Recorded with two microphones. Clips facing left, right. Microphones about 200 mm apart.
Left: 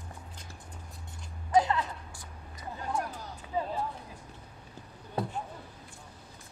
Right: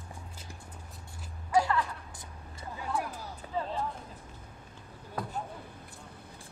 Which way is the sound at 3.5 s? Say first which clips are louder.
Left 2 dB; 10° left (ahead or behind).